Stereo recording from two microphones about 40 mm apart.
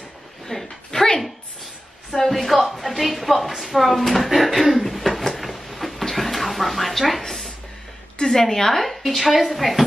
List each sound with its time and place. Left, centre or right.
0.5 s speech: centre
2.1 s a sound: centre
8.2 s speech: centre